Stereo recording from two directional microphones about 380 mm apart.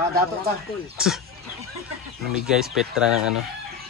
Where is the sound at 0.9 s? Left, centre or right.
Centre.